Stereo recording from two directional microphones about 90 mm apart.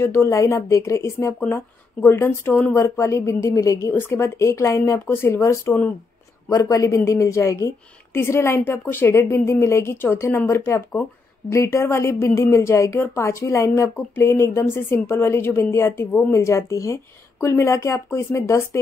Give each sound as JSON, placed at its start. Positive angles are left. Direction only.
{"t": 0.0, "sound": "a woman's voice", "side_deg": 30}